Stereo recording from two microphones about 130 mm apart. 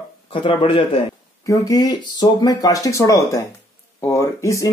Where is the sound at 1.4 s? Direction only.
30° left (ahead or behind).